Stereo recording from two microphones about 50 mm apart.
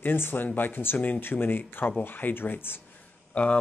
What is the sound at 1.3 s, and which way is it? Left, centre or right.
Speech, left.